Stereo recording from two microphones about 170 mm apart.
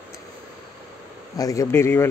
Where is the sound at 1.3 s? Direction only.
20° left (ahead or behind).